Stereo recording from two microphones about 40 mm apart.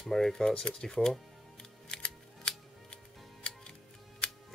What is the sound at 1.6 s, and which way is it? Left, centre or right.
Music, centre.